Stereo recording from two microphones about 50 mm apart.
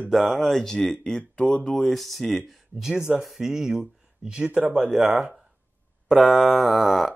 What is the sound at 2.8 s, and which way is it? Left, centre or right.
Speech, centre.